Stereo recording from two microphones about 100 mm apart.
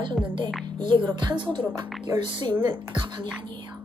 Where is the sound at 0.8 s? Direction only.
50° right (ahead or behind).